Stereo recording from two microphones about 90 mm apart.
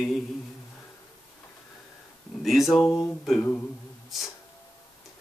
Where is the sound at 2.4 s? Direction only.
Centre (ahead or behind).